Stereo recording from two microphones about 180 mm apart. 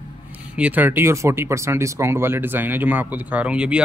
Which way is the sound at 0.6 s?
10° right (ahead or behind).